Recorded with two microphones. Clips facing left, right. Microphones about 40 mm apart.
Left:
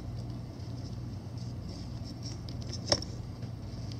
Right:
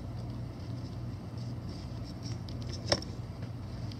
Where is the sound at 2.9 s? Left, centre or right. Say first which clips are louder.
Even; centre.